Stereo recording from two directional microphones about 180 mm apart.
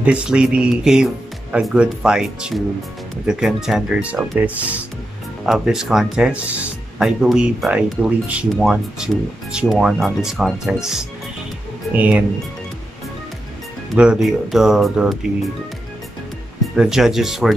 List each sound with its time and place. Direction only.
0.0 s speech: 5° right (ahead or behind)
13.9 s speech: 5° right (ahead or behind)
16.7 s speech: 5° right (ahead or behind)